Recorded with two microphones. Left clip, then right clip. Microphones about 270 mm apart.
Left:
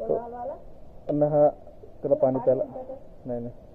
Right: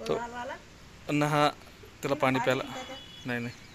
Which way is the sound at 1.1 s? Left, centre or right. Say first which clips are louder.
Left 5 dB; centre.